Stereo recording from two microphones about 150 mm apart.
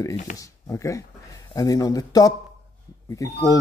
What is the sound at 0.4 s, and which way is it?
Speech, 20° left (ahead or behind).